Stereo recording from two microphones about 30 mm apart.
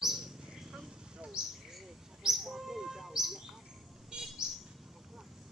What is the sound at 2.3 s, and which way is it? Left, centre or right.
Bird, centre.